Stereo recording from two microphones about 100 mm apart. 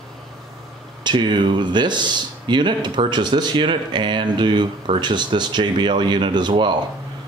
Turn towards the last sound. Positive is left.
turn(degrees=-50)  # may be behind; listen again after turning